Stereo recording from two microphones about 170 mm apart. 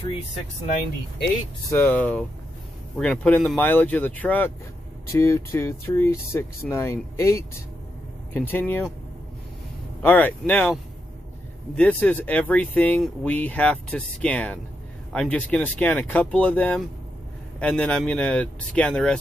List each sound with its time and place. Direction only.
1.7 s speech: 10° left (ahead or behind)
10.0 s speech: 10° left (ahead or behind)
11.7 s speech: 10° left (ahead or behind)